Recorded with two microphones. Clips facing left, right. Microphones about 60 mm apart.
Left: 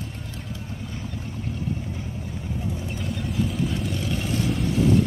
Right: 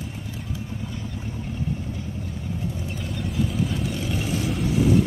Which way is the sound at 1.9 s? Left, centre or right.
Centre.